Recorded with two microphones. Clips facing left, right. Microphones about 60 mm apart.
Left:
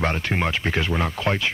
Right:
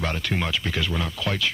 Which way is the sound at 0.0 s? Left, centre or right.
Left.